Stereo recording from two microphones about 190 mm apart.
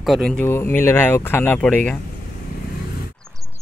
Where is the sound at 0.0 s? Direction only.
Centre (ahead or behind).